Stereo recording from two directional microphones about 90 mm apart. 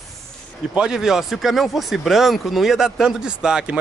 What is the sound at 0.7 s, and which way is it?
Speech, 5° right (ahead or behind).